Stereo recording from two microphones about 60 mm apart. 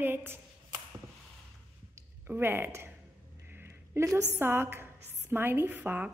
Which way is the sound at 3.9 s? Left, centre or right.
Right.